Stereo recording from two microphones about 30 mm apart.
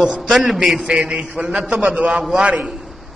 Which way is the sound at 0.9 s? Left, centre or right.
Right.